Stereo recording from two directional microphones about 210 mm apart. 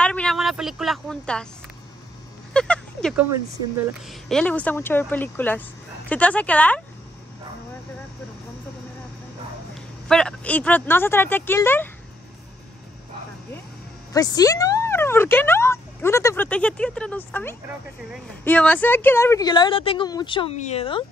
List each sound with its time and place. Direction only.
0.0 s speech: 5° left (ahead or behind)
2.5 s speech: 5° left (ahead or behind)
10.0 s speech: 5° left (ahead or behind)
14.1 s a woman's voice: 15° left (ahead or behind)